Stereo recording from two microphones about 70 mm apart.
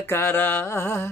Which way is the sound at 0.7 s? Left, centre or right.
Left.